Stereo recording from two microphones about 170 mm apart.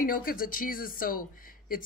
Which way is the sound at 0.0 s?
55° left (ahead or behind).